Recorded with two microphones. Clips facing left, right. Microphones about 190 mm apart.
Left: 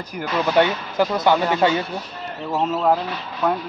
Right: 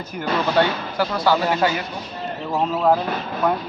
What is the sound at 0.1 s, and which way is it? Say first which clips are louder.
Speech: left 1 dB; 20° left (ahead or behind).